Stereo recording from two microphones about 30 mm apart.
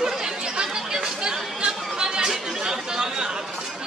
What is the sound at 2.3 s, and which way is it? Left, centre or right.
Speech, centre.